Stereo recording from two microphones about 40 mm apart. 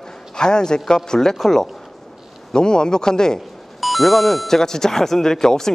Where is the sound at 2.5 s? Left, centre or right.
Centre.